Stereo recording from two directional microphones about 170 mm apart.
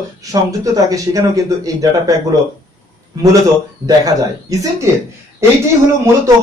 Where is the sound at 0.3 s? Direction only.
20° right (ahead or behind).